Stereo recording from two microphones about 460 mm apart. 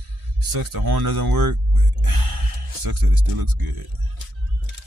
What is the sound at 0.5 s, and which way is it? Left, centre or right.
Speech, right.